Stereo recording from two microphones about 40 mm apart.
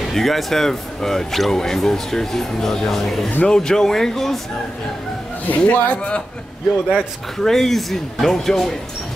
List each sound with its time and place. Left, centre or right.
0.0 s speech: centre
5.7 s speech: left
6.9 s speech: centre